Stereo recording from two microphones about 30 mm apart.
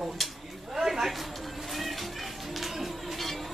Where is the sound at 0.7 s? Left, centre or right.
Centre.